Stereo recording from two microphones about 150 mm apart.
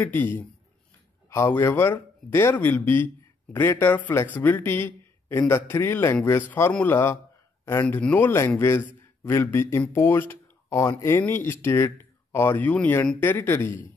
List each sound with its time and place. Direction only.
0.0 s speech: 10° left (ahead or behind)